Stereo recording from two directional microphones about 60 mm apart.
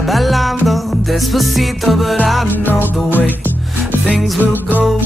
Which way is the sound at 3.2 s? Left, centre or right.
Right.